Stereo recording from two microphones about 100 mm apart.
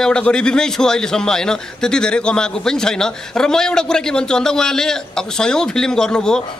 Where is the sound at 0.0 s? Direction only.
10° left (ahead or behind).